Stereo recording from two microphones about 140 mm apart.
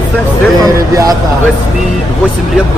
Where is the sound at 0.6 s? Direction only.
25° right (ahead or behind).